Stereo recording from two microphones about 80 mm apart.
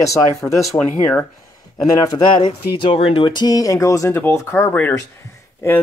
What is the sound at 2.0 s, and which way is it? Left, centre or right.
Speech, left.